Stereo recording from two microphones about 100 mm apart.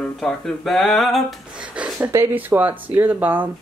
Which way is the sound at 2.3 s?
15° right (ahead or behind).